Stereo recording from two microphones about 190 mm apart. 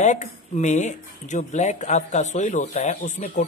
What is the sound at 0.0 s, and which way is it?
Speech, 40° left (ahead or behind).